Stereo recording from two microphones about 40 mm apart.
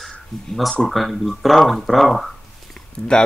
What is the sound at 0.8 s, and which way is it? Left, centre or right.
Speech, centre.